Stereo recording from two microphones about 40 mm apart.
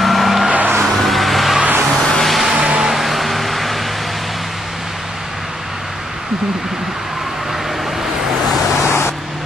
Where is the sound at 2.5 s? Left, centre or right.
Centre.